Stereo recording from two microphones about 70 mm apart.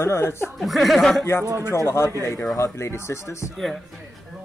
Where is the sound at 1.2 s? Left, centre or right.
Left.